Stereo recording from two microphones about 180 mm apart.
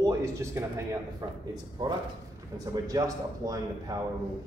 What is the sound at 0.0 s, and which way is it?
A man's voice, 15° right (ahead or behind).